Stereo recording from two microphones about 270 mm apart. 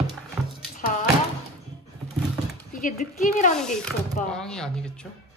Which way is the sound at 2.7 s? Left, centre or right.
Left.